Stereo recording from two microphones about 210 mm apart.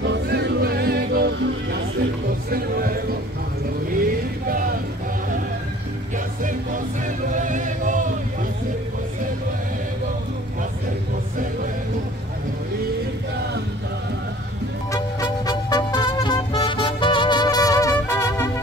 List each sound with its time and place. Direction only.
0.0 s music: 55° right (ahead or behind)
2.5 s a sound: 45° right (ahead or behind)
4.0 s music: 45° right (ahead or behind)
7.2 s chant: 35° right (ahead or behind)
14.9 s music: 15° left (ahead or behind)